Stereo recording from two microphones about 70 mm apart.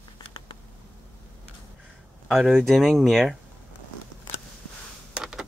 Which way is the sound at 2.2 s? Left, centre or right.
Centre.